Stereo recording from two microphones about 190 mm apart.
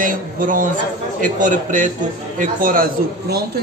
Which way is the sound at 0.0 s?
45° right (ahead or behind).